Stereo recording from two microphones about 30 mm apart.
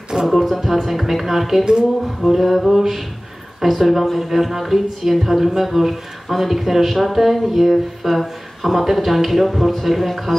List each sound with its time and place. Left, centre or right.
0.3 s speech: centre
1.6 s a sound: centre
2.2 s speech: centre
4.0 s speech: centre
4.3 s speech: centre